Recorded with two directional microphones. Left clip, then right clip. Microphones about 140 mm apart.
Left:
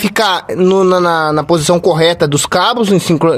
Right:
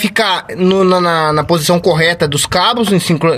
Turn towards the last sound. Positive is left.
turn(degrees=25)  # may be behind; listen again after turning